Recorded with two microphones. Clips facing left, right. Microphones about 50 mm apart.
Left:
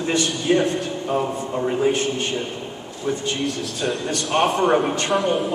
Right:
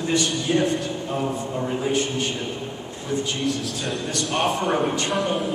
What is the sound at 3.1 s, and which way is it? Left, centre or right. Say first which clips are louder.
Speech: left 1 dB; left.